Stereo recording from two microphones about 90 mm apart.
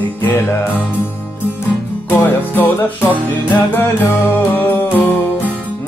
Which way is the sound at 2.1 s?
25° left (ahead or behind).